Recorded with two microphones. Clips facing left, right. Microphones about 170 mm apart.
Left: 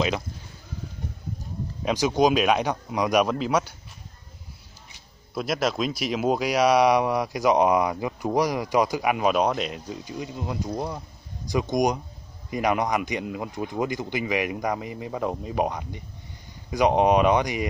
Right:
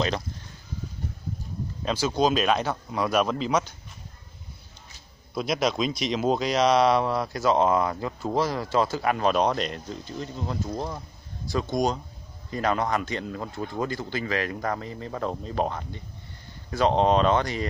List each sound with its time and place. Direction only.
1.9 s speech: 15° left (ahead or behind)
5.3 s speech: centre (ahead or behind)